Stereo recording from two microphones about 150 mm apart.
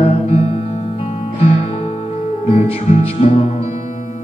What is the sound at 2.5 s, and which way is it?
Music, 40° left (ahead or behind).